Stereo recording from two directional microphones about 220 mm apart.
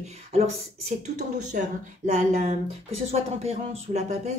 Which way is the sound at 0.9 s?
30° right (ahead or behind).